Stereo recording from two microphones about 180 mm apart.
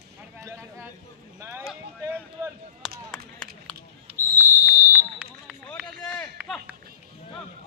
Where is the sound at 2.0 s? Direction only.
10° right (ahead or behind).